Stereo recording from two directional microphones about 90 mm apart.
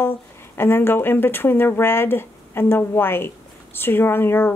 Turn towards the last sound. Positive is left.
turn(degrees=25)  # may be behind; listen again after turning